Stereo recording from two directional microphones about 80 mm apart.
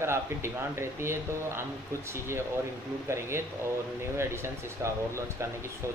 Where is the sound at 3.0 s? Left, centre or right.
Right.